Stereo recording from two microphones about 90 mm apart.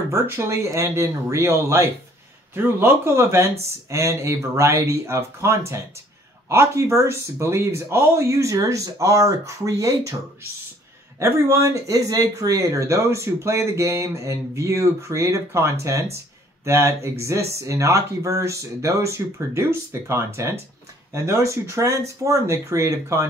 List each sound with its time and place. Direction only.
0.1 s speech: 35° right (ahead or behind)
11.1 s speech: 30° right (ahead or behind)